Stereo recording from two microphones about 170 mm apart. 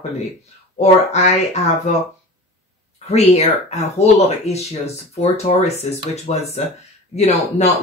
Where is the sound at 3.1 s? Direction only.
40° left (ahead or behind).